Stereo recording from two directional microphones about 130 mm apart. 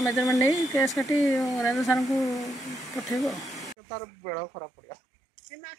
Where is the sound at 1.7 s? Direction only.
Centre (ahead or behind).